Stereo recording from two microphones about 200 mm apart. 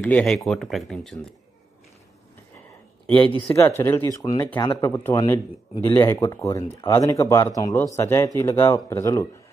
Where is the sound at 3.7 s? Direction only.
10° left (ahead or behind).